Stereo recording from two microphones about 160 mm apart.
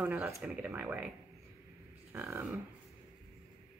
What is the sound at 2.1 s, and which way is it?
Speech, 15° right (ahead or behind).